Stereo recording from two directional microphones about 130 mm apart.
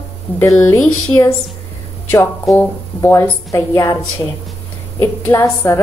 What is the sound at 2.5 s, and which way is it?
A woman's voice, 20° left (ahead or behind).